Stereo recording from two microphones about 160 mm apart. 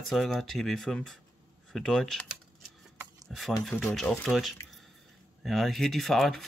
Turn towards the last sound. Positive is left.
turn(degrees=0)  # may be behind; listen again after turning